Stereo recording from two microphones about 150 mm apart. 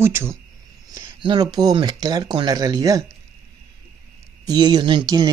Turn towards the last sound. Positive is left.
turn(degrees=-25)  # may be behind; listen again after turning